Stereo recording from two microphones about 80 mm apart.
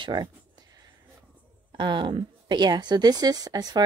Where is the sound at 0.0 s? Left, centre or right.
Right.